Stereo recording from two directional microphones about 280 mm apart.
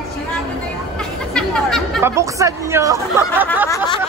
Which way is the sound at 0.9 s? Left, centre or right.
Centre.